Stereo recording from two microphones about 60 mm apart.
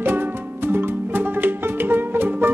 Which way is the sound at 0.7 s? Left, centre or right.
Right.